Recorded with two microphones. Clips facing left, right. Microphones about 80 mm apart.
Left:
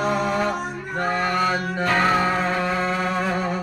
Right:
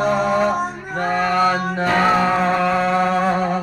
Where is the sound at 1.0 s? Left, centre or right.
Centre.